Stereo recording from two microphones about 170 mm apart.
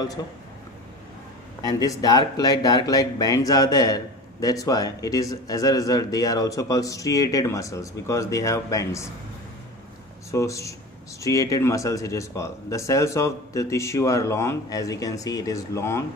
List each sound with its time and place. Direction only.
0.2 s speech: 20° left (ahead or behind)
1.6 s speech: 20° left (ahead or behind)
10.3 s speech: 20° left (ahead or behind)